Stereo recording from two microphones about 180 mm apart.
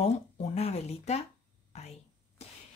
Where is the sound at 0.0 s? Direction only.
35° left (ahead or behind).